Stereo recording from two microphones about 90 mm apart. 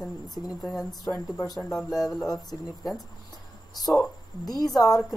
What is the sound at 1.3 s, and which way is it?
Speech, 40° left (ahead or behind).